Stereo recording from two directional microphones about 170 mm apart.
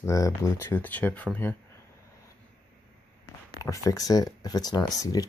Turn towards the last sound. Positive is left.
turn(degrees=20)  # may be behind; listen again after turning